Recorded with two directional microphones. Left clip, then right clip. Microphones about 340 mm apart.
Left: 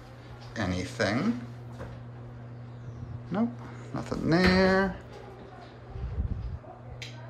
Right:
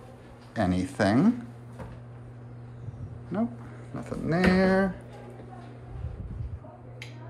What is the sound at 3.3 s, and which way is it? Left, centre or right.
A man's voice, centre.